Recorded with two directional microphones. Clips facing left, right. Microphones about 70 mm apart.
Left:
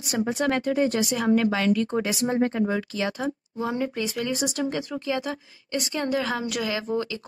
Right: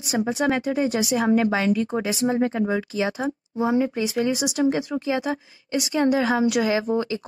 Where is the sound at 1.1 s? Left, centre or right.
Right.